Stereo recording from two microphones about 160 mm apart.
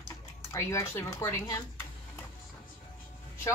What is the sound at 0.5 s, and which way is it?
Speech, 15° left (ahead or behind).